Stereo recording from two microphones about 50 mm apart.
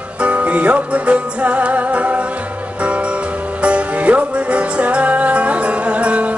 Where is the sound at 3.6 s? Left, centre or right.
Right.